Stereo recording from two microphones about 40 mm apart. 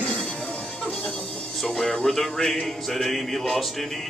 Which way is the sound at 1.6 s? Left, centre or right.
Centre.